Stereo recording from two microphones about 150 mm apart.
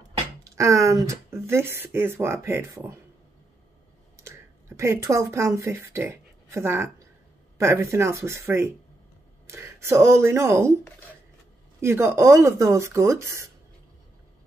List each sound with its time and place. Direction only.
0.4 s speech: 20° right (ahead or behind)
4.2 s speech: 15° right (ahead or behind)
11.8 s speech: 15° right (ahead or behind)